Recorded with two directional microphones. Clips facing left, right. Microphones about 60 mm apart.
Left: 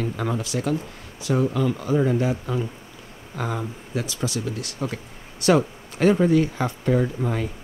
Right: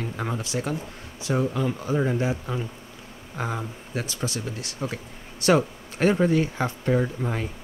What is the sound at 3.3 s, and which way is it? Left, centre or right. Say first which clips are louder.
Speech: left 2 dB; centre.